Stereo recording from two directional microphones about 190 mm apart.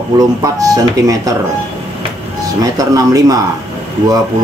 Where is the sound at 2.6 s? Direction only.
20° right (ahead or behind).